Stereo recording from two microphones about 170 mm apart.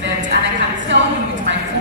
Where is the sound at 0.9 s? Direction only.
90° right.